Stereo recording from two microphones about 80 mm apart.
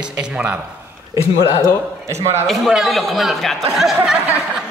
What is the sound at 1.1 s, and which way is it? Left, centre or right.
A man's voice, right.